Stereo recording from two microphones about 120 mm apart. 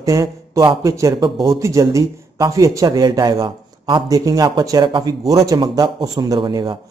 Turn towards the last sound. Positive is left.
turn(degrees=-40)  # may be behind; listen again after turning